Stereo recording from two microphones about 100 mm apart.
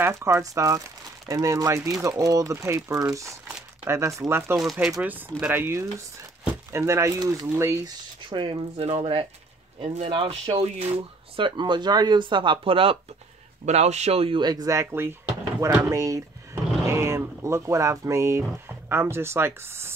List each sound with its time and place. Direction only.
0.0 s speech: 30° right (ahead or behind)
7.8 s speech: 55° right (ahead or behind)
8.7 s speech: 80° right
9.8 s speech: 65° right (ahead or behind); by 11.4 s 80° right
11.4 s speech: 50° right (ahead or behind)
13.7 s speech: 90° right
14.4 s speech: 40° right (ahead or behind)
14.8 s speech: 25° right (ahead or behind)